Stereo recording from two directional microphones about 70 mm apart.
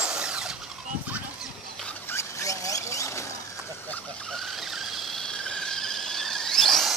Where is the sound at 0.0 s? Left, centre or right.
Centre.